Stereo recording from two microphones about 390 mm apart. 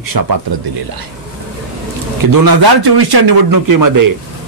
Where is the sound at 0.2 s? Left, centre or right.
Right.